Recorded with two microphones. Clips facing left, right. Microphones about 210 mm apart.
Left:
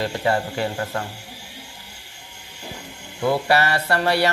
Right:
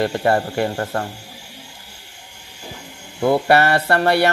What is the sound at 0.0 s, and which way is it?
Speech, 50° right (ahead or behind).